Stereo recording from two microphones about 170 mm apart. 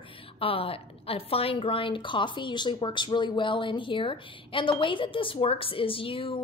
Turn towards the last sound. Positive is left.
turn(degrees=30)  # may be behind; listen again after turning